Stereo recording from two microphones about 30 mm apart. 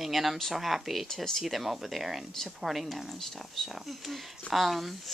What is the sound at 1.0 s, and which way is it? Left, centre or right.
Speech, centre.